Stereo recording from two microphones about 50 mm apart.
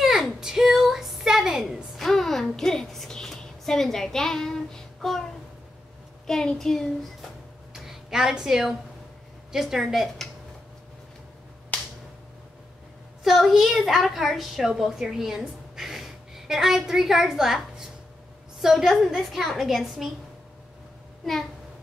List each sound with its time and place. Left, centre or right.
0.4 s a sound: centre
2.0 s a sound: centre
6.2 s child singing: centre
7.8 s a woman's voice: centre
11.7 s finger snapping: left
13.2 s a woman's voice: centre